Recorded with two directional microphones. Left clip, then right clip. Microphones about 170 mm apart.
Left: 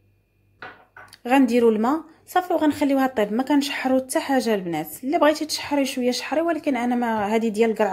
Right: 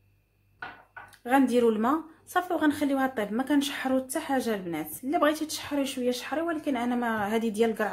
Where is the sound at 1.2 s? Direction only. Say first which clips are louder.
Left 5 dB; 30° left (ahead or behind).